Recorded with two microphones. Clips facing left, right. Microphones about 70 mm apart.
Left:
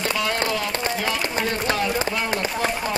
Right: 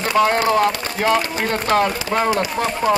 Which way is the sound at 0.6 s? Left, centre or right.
Right.